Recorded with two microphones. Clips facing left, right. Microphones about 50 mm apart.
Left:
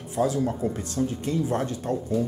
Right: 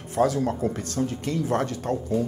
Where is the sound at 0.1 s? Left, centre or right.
Right.